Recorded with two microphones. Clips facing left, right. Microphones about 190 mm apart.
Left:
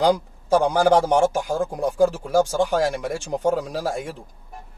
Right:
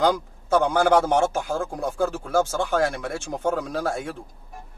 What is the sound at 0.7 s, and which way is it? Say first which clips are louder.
Speech: left 1 dB; 15° left (ahead or behind).